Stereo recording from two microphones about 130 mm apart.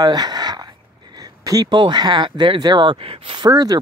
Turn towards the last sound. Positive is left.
turn(degrees=-30)  # may be behind; listen again after turning